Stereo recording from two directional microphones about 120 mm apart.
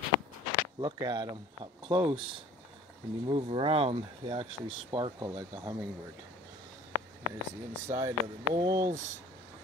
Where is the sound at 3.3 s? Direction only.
50° right (ahead or behind).